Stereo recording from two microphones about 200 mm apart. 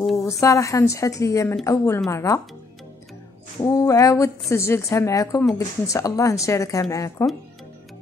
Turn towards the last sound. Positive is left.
turn(degrees=15)  # may be behind; listen again after turning